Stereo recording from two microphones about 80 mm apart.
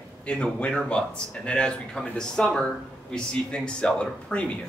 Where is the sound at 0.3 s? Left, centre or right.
Centre.